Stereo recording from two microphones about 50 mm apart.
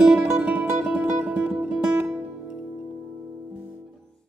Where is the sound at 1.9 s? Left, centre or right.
Right.